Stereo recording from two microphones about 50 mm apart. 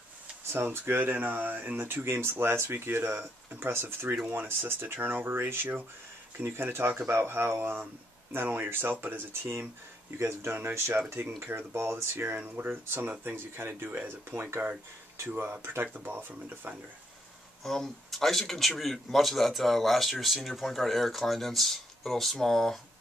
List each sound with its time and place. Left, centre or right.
0.7 s speech: right
1.0 s speech: right
4.3 s speech: right
12.4 s speech: right
15.9 s speech: right
17.6 s speech: centre